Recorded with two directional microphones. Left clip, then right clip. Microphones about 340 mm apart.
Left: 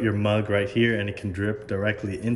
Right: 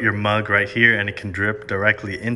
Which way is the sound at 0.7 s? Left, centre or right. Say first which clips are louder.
Right 8 dB; centre.